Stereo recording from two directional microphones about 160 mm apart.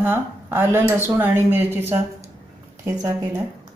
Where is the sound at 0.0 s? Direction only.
15° right (ahead or behind).